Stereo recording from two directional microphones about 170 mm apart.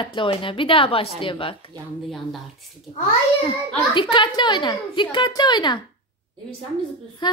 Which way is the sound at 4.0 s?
30° left (ahead or behind).